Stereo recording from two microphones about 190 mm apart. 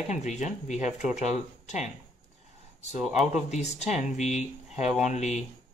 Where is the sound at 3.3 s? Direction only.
35° left (ahead or behind).